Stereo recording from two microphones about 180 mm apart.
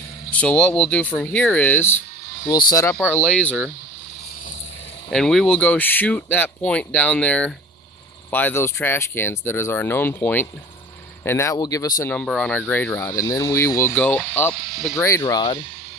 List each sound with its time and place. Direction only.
0.3 s speech: 5° left (ahead or behind)
5.1 s speech: centre (ahead or behind); by 11.9 s 20° left (ahead or behind)
12.0 s speech: 10° left (ahead or behind)
15.0 s speech: 15° left (ahead or behind)